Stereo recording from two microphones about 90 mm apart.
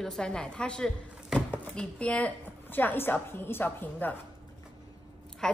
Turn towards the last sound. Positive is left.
turn(degrees=5)  # may be behind; listen again after turning